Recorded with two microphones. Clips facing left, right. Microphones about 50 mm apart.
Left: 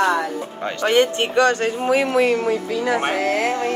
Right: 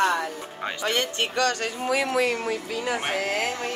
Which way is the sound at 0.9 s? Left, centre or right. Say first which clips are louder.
Left 10 dB; left.